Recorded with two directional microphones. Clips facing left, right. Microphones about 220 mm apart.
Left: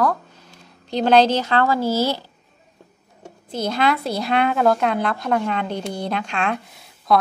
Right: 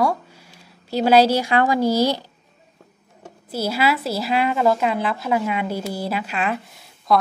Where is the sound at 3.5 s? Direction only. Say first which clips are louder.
Even; 5° right (ahead or behind).